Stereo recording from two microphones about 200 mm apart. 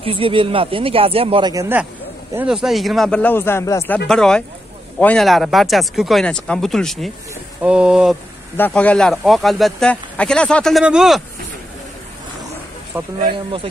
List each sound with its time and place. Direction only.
0.0 s speech: 25° right (ahead or behind); by 8.2 s 5° right (ahead or behind)
8.5 s speech: 10° left (ahead or behind)
13.2 s speech: 25° right (ahead or behind)